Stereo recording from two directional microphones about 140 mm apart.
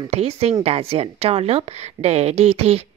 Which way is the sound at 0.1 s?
45° right (ahead or behind).